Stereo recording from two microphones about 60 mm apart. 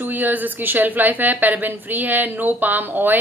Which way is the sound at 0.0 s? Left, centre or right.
Right.